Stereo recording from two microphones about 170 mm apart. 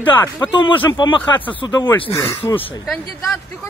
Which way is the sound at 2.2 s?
15° left (ahead or behind).